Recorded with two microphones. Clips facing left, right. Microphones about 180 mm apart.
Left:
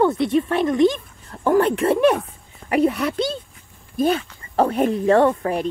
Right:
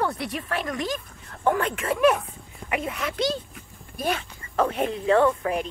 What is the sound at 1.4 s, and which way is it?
Speech, 35° left (ahead or behind).